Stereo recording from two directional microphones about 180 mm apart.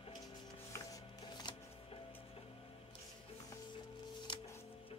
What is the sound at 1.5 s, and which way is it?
Music, 25° left (ahead or behind).